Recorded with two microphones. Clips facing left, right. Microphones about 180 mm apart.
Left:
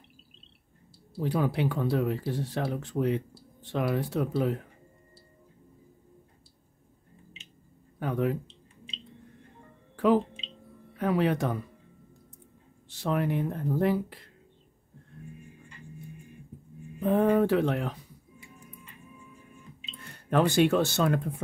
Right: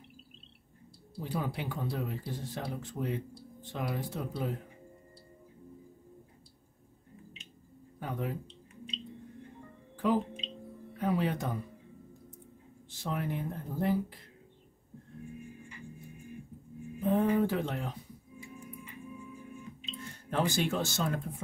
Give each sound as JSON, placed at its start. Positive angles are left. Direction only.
{"t": 1.2, "sound": "speech", "side_deg": 75}
{"t": 8.0, "sound": "speech", "side_deg": 75}
{"t": 9.9, "sound": "speech", "side_deg": 75}
{"t": 12.9, "sound": "speech", "side_deg": 75}
{"t": 17.0, "sound": "speech", "side_deg": 70}
{"t": 20.0, "sound": "speech", "side_deg": 65}